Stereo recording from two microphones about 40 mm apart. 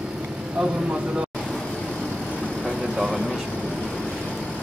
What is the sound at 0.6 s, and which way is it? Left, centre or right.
Speech, right.